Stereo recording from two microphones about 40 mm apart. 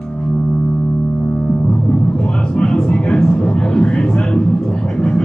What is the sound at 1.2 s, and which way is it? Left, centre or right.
Music, left.